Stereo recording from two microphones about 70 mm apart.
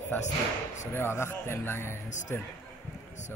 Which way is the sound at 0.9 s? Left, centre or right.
Left.